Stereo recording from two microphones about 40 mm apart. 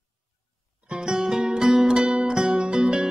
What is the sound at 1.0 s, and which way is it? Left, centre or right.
Music, centre.